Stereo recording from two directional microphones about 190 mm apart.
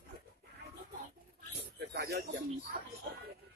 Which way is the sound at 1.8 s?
60° right (ahead or behind).